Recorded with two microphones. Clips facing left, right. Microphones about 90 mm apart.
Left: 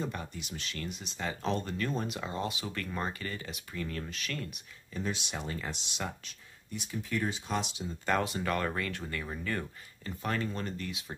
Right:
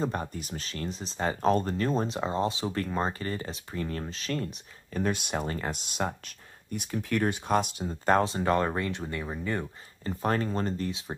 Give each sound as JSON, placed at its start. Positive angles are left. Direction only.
{"t": 0.0, "sound": "speech", "side_deg": -40}
{"t": 4.9, "sound": "speech", "side_deg": -55}
{"t": 10.0, "sound": "speech", "side_deg": -35}